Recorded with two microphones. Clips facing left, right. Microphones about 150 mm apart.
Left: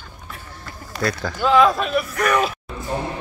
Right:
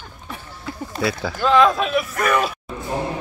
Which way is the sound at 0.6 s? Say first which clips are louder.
Right 1 dB; 5° right (ahead or behind).